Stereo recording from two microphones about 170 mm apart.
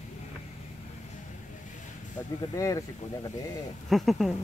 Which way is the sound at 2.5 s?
20° left (ahead or behind).